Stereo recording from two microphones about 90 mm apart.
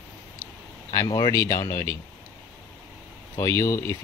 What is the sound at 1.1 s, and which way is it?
Speech, 50° left (ahead or behind).